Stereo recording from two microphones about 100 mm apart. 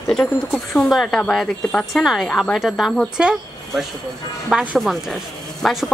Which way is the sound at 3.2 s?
10° right (ahead or behind).